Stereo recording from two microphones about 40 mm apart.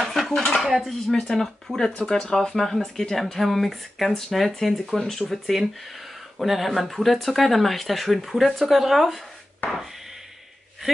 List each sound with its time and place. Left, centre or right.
0.0 s dishes: centre
0.6 s speech: centre
1.1 s speech: left; by 4.7 s centre
4.9 s speech: centre